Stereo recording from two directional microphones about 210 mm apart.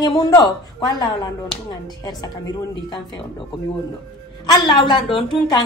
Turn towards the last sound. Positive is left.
turn(degrees=25)  # may be behind; listen again after turning